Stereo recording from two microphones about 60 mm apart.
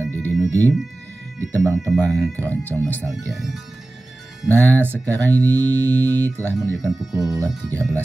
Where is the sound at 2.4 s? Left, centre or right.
Left.